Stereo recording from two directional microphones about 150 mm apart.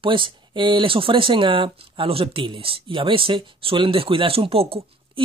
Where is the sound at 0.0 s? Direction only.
35° right (ahead or behind).